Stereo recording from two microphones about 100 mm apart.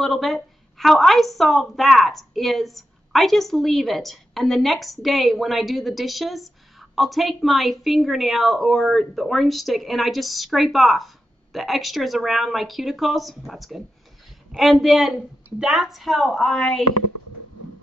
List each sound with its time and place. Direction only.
0.0 s a woman's voice: centre (ahead or behind)